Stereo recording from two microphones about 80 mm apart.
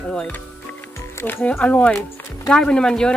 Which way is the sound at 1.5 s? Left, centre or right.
Centre.